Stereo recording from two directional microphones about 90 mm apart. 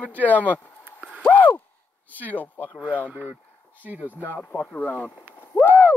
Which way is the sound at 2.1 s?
20° left (ahead or behind).